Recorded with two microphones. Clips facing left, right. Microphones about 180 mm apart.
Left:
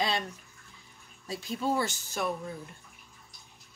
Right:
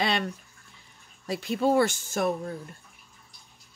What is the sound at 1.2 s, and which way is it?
Speech, 70° right (ahead or behind).